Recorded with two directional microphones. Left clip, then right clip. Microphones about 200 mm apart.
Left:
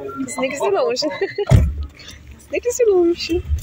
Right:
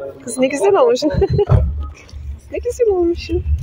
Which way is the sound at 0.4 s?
25° right (ahead or behind).